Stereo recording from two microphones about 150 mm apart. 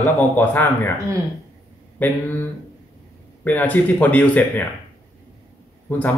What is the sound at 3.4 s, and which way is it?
Speech, 10° left (ahead or behind).